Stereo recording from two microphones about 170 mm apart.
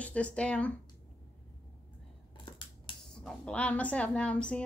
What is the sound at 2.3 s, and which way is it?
Scissors, 30° left (ahead or behind).